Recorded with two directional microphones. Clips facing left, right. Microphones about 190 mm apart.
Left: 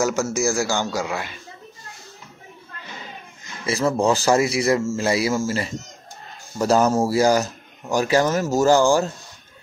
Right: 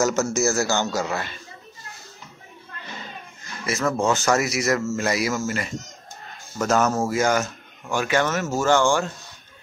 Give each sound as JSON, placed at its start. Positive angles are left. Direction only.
{"t": 0.0, "sound": "a man's voice", "side_deg": 10}
{"t": 3.6, "sound": "a man's voice", "side_deg": 30}